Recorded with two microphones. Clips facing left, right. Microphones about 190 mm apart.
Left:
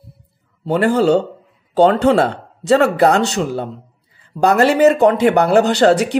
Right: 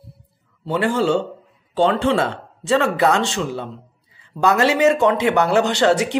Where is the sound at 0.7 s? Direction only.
40° left (ahead or behind).